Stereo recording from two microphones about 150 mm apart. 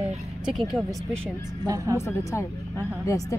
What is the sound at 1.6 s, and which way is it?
Speech, 20° right (ahead or behind).